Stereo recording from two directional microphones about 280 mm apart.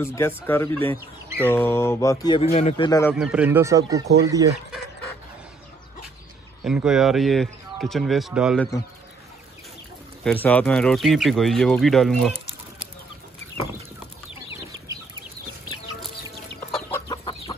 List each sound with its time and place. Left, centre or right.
0.0 s speech: centre
2.9 s speech: centre
3.2 s speech: centre
6.6 s speech: centre
10.2 s speech: centre
16.7 s chicken: centre